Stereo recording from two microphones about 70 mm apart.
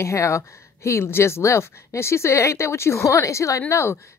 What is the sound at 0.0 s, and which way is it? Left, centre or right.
A woman's voice, left.